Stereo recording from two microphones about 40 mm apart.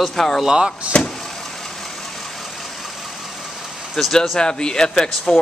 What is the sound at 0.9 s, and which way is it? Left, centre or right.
Vehicle, left.